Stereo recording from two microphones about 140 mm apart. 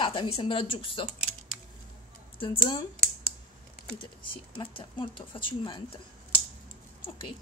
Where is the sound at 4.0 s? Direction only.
35° left (ahead or behind).